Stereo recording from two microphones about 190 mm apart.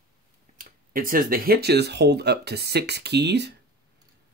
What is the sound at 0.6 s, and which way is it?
Speech, 50° right (ahead or behind).